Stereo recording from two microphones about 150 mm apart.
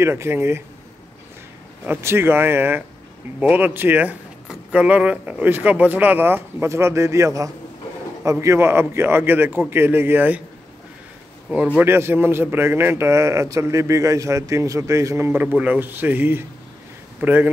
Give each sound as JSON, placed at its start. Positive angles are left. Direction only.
{"t": 0.0, "sound": "a man's voice", "side_deg": -15}
{"t": 1.9, "sound": "a man's voice", "side_deg": -15}
{"t": 11.5, "sound": "a man's voice", "side_deg": -10}